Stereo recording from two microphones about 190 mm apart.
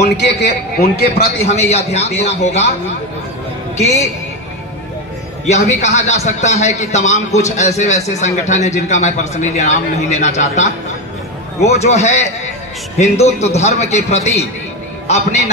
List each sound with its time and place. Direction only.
0.2 s a man's voice: 60° left (ahead or behind)
1.4 s speech: 35° left (ahead or behind)
5.5 s speech: 35° left (ahead or behind)